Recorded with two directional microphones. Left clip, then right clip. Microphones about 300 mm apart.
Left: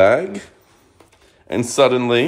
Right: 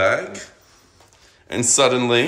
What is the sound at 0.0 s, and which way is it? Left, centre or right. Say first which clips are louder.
Speech: left 5 dB; centre.